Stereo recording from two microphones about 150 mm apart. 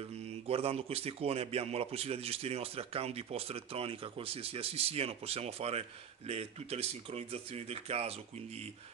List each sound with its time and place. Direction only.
0.5 s a man's voice: 40° right (ahead or behind)